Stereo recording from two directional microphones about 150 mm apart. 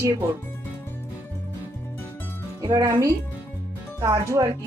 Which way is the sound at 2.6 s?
20° right (ahead or behind).